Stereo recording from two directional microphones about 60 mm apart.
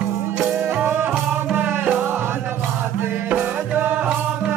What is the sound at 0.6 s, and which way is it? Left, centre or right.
Music, right.